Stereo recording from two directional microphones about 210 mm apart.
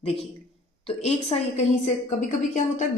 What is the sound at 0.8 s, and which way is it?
A woman's voice, 30° left (ahead or behind).